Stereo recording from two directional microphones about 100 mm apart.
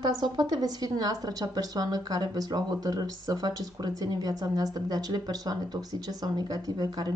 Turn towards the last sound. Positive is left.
turn(degrees=-45)  # may be behind; listen again after turning